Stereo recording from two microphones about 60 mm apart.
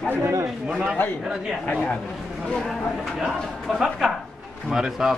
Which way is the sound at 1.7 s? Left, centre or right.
Centre.